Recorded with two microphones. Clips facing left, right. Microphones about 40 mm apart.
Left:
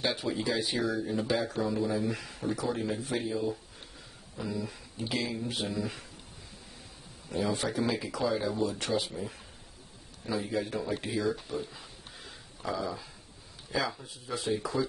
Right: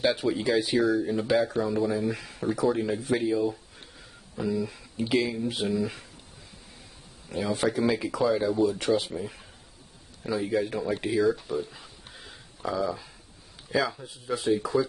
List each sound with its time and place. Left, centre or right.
0.0 s speech: centre
0.7 s speech: centre
4.9 s speech: centre
5.2 s speech: centre
7.5 s speech: centre
11.2 s a sound: centre
13.7 s speech: centre